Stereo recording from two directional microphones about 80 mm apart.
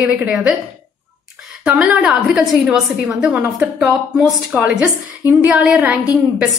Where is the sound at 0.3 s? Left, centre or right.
Centre.